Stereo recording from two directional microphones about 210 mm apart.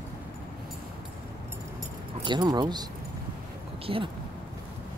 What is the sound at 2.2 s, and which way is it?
Speech, 20° right (ahead or behind).